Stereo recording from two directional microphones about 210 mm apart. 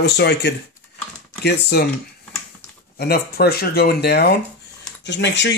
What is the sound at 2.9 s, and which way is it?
Speech, 50° left (ahead or behind).